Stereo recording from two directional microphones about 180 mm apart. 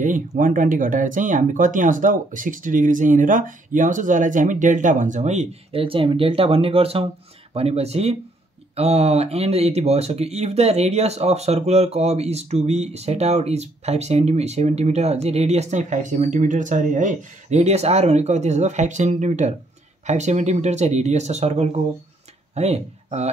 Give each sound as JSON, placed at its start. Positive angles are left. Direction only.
{"t": 0.0, "sound": "speech", "side_deg": -45}